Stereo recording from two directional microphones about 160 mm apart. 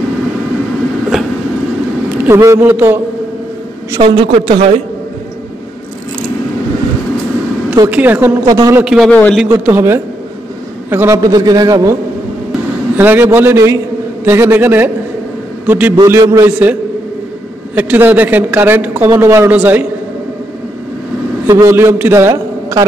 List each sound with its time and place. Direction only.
2.0 s a man's voice: 15° right (ahead or behind)
4.0 s a man's voice: 35° right (ahead or behind)
7.9 s a man's voice: 10° right (ahead or behind)
8.5 s a man's voice: 20° right (ahead or behind)
8.8 s a man's voice: 5° right (ahead or behind)
9.1 s a man's voice: 10° left (ahead or behind)
9.5 s a man's voice: 15° right (ahead or behind)
17.7 s a man's voice: 10° right (ahead or behind)
21.5 s a man's voice: 15° right (ahead or behind)